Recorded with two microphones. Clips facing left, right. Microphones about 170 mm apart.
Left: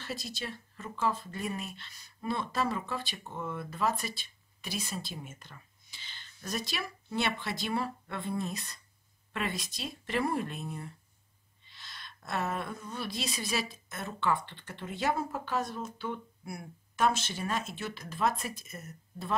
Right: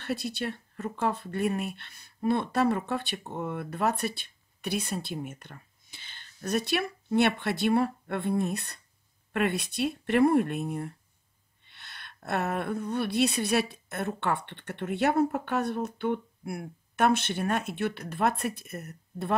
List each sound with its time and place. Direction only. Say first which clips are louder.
0.0 s a woman's voice: right 7 dB; 60° right (ahead or behind)